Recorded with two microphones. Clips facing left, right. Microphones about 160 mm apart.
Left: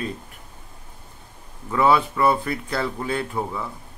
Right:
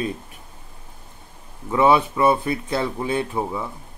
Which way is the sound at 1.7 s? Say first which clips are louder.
Right 2 dB; 20° right (ahead or behind).